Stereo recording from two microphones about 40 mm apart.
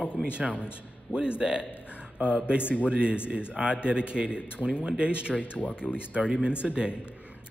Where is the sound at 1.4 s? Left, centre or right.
Centre.